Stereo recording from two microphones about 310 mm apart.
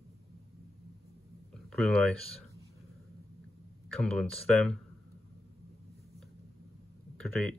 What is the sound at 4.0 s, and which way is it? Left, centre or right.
Speech, centre.